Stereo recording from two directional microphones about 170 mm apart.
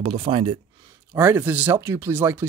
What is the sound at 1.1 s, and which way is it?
Speech, 10° right (ahead or behind).